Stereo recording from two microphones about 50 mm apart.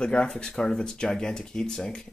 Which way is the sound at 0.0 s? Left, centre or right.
Left.